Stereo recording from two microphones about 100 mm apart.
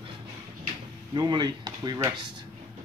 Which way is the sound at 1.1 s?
50° right (ahead or behind).